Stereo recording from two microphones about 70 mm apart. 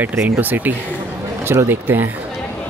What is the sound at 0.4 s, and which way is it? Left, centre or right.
Speech, right.